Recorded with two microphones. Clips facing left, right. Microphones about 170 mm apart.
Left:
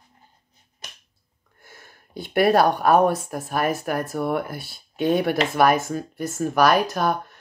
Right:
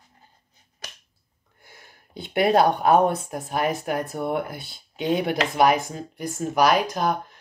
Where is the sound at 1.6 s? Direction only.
20° right (ahead or behind).